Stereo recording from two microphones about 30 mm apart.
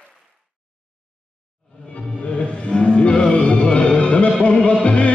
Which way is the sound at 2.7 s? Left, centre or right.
Left.